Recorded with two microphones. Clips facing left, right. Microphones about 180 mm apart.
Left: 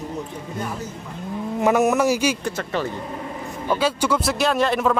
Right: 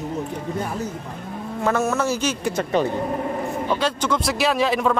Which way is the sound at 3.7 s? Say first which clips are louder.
Left 4 dB; 5° left (ahead or behind).